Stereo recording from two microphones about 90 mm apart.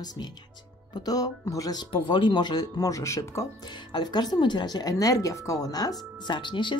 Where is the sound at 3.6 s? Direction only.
60° left (ahead or behind); by 5.9 s 45° left (ahead or behind).